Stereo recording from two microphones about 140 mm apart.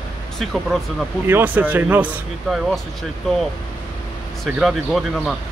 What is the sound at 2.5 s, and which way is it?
Speech, centre (ahead or behind).